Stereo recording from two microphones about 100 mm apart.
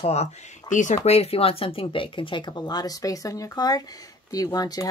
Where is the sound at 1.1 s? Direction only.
85° left.